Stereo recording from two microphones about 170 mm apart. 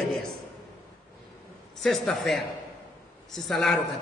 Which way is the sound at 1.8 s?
Centre (ahead or behind).